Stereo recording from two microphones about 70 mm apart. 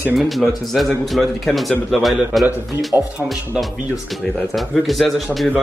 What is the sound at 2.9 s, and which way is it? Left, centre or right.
Speech, right.